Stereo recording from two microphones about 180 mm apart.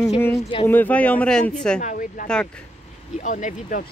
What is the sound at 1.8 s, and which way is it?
A woman's voice, 45° left (ahead or behind).